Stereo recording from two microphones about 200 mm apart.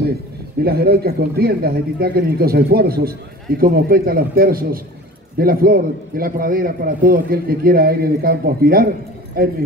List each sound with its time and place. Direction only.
0.6 s speech: 50° right (ahead or behind)